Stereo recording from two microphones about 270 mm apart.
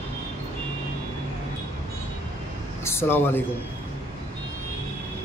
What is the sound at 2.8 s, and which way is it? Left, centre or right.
Speech, centre.